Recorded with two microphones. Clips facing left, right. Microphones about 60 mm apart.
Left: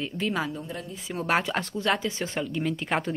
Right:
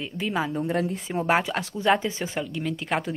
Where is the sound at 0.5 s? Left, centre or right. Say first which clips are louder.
Right 10 dB; right.